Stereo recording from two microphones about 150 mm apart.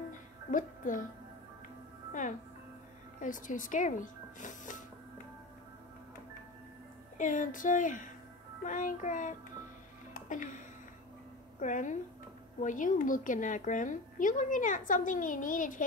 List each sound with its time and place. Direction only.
0.1 s music: 60° left (ahead or behind)
3.2 s speech: 60° left (ahead or behind)
7.2 s a woman's voice: 60° left (ahead or behind)
10.3 s a woman's voice: 60° left (ahead or behind)
11.6 s a woman's voice: 55° left (ahead or behind)